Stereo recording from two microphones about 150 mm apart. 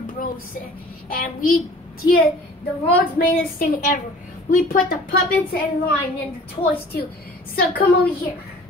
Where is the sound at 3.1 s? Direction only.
75° left (ahead or behind).